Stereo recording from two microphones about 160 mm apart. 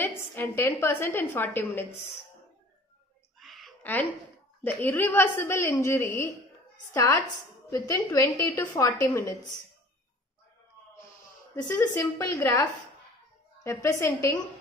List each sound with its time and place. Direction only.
0.0 s a woman's voice: 15° left (ahead or behind)
3.3 s a sound: centre (ahead or behind)
3.8 s a woman's voice: 10° left (ahead or behind)
11.5 s a woman's voice: 25° left (ahead or behind)
13.7 s a woman's voice: 15° left (ahead or behind)